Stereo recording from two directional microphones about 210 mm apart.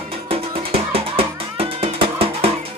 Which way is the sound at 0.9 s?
25° right (ahead or behind).